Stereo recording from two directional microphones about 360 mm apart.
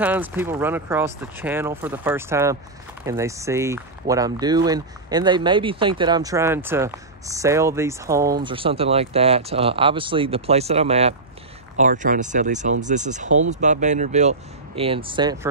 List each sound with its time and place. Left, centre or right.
0.0 s speech: centre